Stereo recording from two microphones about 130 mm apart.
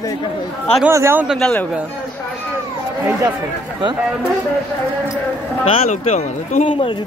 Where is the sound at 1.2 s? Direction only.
5° left (ahead or behind).